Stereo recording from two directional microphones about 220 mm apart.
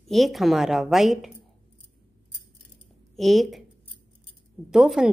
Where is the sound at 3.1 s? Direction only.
Centre (ahead or behind).